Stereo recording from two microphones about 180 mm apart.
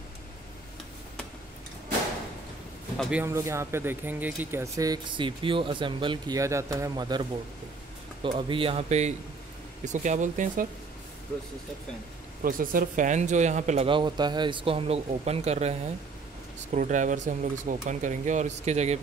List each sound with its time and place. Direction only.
3.0 s speech: 5° right (ahead or behind); by 10.7 s 45° right (ahead or behind)
12.4 s speech: 50° right (ahead or behind)
13.8 s speech: 25° right (ahead or behind)
16.7 s speech: 45° right (ahead or behind)